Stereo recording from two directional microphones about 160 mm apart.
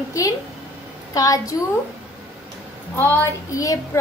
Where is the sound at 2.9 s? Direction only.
10° left (ahead or behind).